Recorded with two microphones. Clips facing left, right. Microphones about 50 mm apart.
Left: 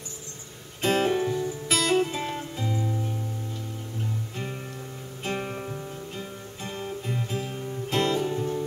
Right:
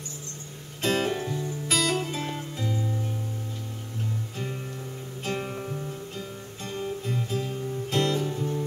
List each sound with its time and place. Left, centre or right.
0.8 s music: centre
5.2 s music: centre